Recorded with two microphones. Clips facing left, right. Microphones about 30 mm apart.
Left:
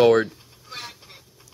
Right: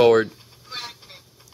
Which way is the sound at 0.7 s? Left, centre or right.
Centre.